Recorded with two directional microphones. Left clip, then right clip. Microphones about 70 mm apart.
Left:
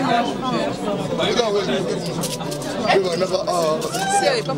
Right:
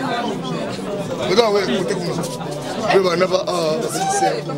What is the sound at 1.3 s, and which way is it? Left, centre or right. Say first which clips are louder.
Chatter: right 7 dB; right.